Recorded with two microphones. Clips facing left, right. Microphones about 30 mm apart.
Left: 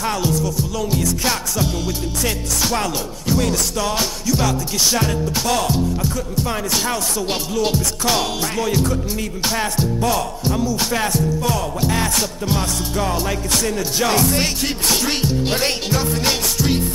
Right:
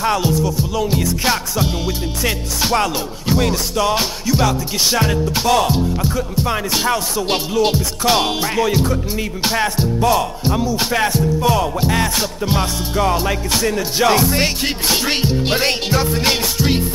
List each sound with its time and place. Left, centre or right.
0.0 s music: centre